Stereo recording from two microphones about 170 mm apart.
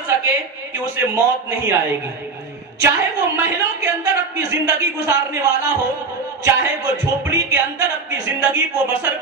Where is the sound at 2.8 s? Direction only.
15° right (ahead or behind).